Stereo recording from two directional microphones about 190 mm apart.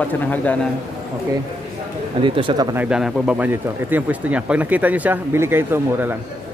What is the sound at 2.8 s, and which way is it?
Speech, 5° right (ahead or behind).